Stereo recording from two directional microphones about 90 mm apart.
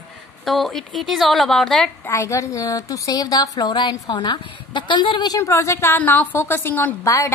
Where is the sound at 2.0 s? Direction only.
35° left (ahead or behind); by 5.4 s 55° left (ahead or behind).